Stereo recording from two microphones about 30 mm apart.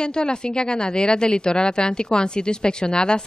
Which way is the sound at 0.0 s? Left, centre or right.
Left.